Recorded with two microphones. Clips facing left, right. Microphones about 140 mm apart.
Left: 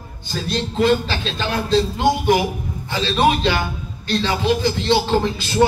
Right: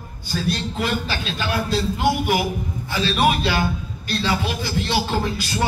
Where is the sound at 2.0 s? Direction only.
20° left (ahead or behind).